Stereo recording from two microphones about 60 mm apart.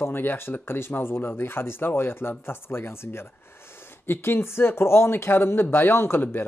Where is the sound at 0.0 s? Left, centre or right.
Left.